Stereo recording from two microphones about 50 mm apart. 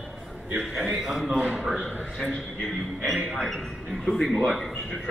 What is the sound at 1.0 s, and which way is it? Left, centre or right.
Speech, centre.